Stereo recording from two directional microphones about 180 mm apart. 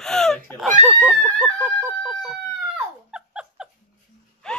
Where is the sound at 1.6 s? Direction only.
10° right (ahead or behind).